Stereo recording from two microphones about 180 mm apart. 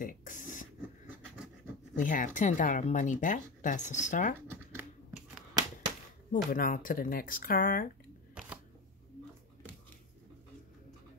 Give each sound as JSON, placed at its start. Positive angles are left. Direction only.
{"t": 0.0, "sound": "beatboxing", "side_deg": 45}
{"t": 2.0, "sound": "speech", "side_deg": 45}
{"t": 4.5, "sound": "a sound", "side_deg": -10}
{"t": 6.3, "sound": "speech", "side_deg": 50}